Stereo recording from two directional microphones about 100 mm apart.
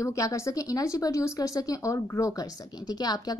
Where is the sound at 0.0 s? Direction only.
30° left (ahead or behind).